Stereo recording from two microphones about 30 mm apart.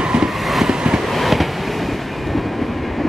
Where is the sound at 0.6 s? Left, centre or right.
Right.